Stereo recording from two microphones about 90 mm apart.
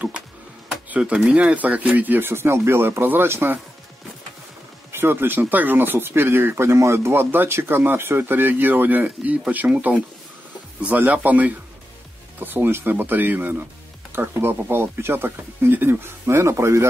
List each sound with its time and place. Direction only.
0.8 s speech: 15° right (ahead or behind)
4.9 s speech: 25° right (ahead or behind)